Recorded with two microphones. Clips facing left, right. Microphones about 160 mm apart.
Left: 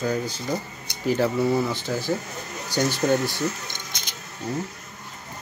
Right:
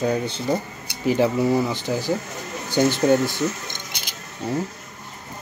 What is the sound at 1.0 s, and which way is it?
Speech, 15° right (ahead or behind).